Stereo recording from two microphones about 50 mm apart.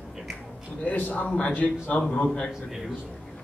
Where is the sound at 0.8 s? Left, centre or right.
Left.